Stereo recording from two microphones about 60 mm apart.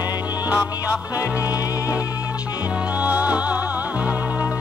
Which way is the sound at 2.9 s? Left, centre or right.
Right.